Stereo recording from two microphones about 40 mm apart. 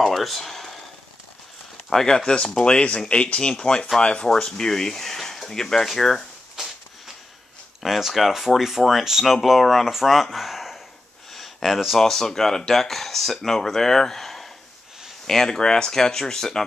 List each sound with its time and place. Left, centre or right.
0.0 s speech: centre
1.9 s speech: centre; by 4.3 s left
4.5 s speech: centre
7.8 s speech: centre
11.3 s a sound: centre
12.0 s speech: centre